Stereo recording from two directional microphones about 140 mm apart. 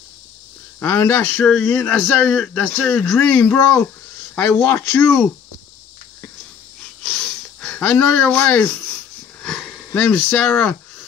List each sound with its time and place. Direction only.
0.7 s speech: 15° left (ahead or behind)
1.4 s speech: centre (ahead or behind)
4.6 s speech: 20° left (ahead or behind)
6.8 s wheeze: centre (ahead or behind)
9.4 s sniff: centre (ahead or behind)
10.5 s a sound: 15° left (ahead or behind)